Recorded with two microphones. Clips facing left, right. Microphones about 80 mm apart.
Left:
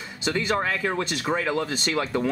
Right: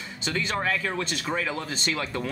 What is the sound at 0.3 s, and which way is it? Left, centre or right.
Speech, centre.